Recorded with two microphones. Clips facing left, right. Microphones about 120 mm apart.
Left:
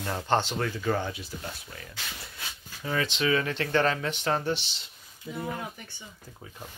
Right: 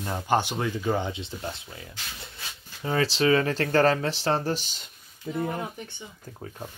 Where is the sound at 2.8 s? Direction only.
35° right (ahead or behind).